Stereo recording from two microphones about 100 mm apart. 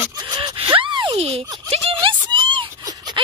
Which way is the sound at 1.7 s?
80° right.